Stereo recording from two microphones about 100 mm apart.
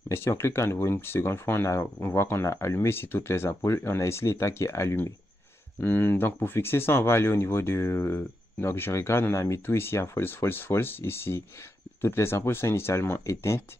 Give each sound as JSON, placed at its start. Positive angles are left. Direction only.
{"t": 0.1, "sound": "speech", "side_deg": 25}